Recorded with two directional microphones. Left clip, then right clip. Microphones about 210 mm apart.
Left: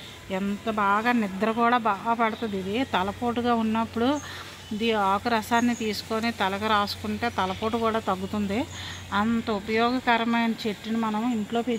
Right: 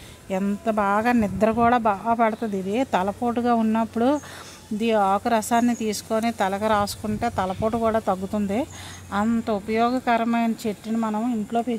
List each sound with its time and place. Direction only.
0.3 s speech: 55° right (ahead or behind)